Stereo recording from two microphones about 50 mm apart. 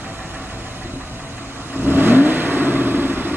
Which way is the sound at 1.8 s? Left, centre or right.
Right.